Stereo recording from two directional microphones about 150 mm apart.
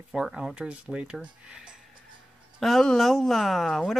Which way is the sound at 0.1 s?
Centre (ahead or behind).